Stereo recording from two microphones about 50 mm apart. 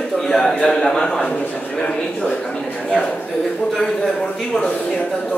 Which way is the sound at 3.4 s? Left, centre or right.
Centre.